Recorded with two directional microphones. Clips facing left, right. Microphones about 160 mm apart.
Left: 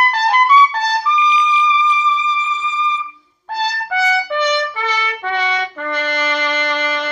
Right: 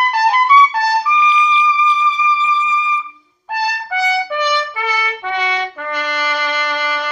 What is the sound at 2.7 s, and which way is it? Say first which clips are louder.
Trumpet: right 2 dB; 30° left (ahead or behind).